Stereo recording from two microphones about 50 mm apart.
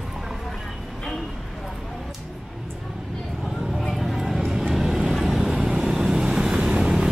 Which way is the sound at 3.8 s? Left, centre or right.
Centre.